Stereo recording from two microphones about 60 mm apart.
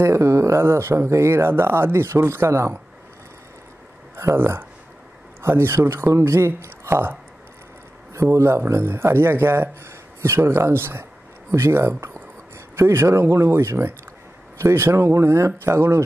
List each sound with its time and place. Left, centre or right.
0.0 s speech: right
4.2 s speech: right
8.1 s speech: right